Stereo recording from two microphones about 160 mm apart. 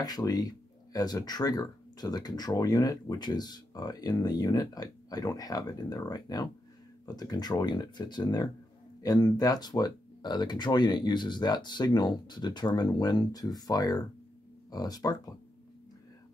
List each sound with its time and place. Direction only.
0.0 s speech: 25° left (ahead or behind)